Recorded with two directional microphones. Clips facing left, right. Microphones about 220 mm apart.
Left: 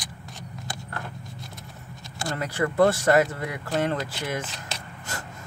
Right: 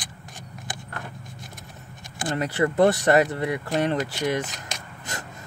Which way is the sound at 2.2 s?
20° right (ahead or behind).